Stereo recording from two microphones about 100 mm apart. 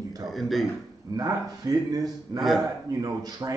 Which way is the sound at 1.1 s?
40° right (ahead or behind).